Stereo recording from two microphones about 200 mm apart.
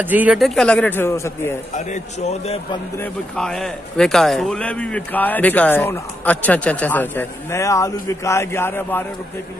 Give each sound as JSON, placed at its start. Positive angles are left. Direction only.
{"t": 0.0, "sound": "a man's voice", "side_deg": -10}
{"t": 1.7, "sound": "a man's voice", "side_deg": 35}
{"t": 3.0, "sound": "a man's voice", "side_deg": 5}